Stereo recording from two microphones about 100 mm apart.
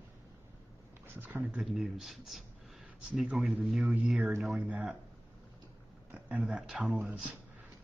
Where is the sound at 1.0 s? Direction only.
20° right (ahead or behind).